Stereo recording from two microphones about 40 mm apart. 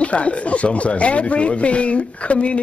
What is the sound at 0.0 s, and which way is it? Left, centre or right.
Speech, left.